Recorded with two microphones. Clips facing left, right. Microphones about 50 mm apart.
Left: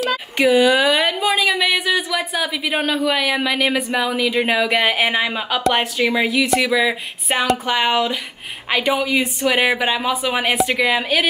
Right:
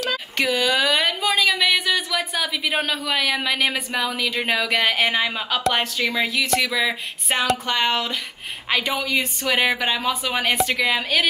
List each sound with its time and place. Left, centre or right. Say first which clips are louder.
0.4 s speech: left 7 dB; centre
5.8 s a woman's voice: left 4 dB; left
6.2 s speech: left 4 dB; centre